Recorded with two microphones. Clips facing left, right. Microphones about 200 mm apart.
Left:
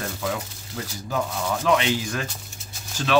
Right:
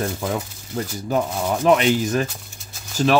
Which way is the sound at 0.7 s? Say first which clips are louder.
Right 6 dB; 45° right (ahead or behind).